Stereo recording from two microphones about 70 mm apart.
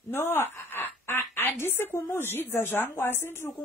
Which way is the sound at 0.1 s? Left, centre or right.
Left.